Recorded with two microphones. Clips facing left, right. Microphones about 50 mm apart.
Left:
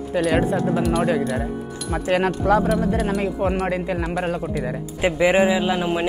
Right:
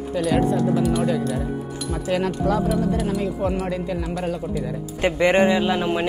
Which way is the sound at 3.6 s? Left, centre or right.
Left.